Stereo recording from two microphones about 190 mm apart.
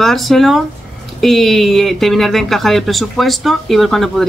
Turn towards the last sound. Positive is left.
turn(degrees=0)  # may be behind; listen again after turning